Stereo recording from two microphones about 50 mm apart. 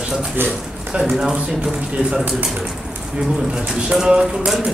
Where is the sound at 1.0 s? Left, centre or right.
Centre.